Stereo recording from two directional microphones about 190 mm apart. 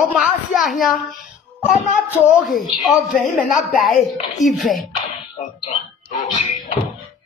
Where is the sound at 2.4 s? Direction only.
Centre (ahead or behind).